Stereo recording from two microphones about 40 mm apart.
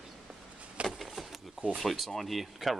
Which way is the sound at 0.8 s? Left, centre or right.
Right.